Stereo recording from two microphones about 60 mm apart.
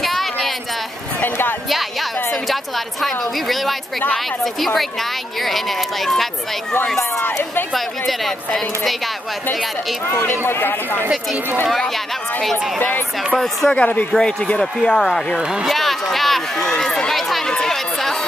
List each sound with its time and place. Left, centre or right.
0.0 s a sound: centre
1.7 s music: centre
2.4 s a woman's voice: centre
7.7 s a woman's voice: centre
10.0 s speech: left
12.7 s speech: left
13.4 s a woman's voice: centre
13.7 s speech: left
15.0 s a woman's voice: centre
15.7 s a sound: centre
17.5 s chatter: centre